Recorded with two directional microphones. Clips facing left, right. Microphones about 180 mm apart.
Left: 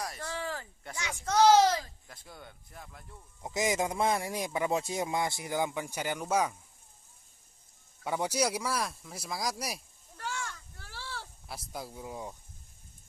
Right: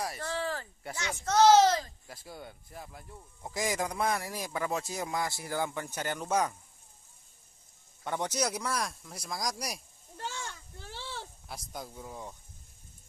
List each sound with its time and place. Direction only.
0.2 s a sound: 10° left (ahead or behind)
1.2 s speech: 10° left (ahead or behind)
2.0 s speech: 5° right (ahead or behind)
3.4 s speech: 20° left (ahead or behind)
8.0 s speech: 10° left (ahead or behind)
10.1 s a sound: 25° right (ahead or behind)
11.4 s speech: 5° left (ahead or behind)